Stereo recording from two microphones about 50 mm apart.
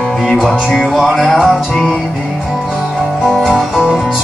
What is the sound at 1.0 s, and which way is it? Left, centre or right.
Music, centre.